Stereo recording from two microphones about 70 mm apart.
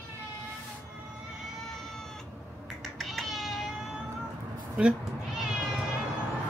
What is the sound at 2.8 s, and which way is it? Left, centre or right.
Cat, centre.